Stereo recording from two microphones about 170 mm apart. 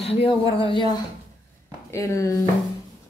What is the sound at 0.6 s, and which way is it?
Speech, 30° left (ahead or behind).